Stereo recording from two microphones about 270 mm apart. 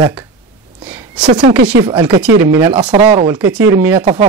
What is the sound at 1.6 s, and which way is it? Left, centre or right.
Speech, right.